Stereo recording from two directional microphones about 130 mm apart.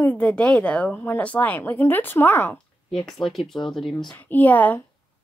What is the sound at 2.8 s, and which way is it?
Speech, centre (ahead or behind).